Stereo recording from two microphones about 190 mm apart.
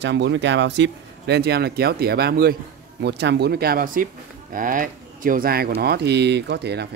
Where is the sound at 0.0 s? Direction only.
65° right (ahead or behind).